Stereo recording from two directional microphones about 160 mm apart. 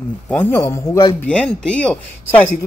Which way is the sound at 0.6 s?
25° left (ahead or behind).